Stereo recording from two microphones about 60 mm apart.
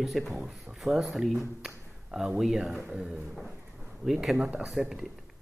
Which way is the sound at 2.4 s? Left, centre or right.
Centre.